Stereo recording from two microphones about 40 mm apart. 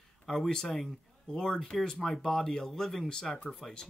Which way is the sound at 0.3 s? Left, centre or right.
Centre.